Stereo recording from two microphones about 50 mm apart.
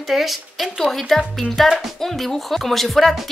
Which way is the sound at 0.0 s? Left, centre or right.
Centre.